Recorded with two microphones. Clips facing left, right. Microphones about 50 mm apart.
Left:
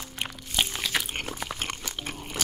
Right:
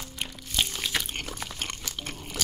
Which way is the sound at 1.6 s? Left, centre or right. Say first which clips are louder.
Left 2 dB; centre.